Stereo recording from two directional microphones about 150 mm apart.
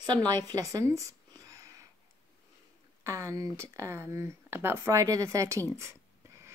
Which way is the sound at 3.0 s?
20° right (ahead or behind).